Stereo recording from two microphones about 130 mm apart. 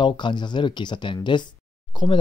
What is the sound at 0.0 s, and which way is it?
Speech, 35° left (ahead or behind).